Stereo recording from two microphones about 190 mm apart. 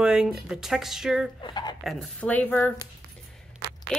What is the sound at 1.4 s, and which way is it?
Speech, 25° left (ahead or behind).